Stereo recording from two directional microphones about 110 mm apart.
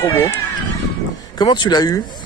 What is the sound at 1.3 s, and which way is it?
Speech, 45° left (ahead or behind).